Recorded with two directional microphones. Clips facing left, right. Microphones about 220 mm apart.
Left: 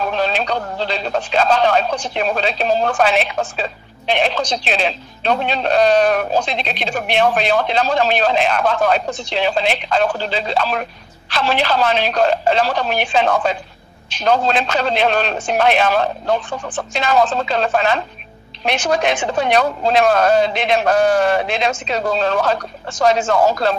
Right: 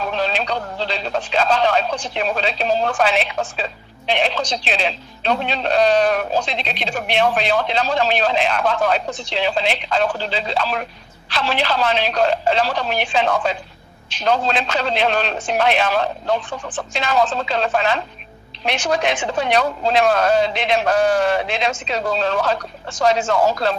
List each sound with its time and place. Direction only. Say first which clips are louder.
0.1 s speech: left 2 dB; 50° left (ahead or behind)